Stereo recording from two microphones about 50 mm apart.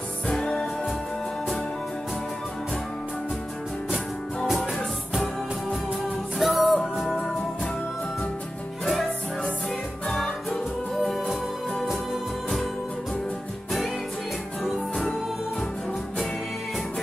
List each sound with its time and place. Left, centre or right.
0.3 s music: centre
6.4 s music: centre
10.0 s music: centre
11.8 s music: centre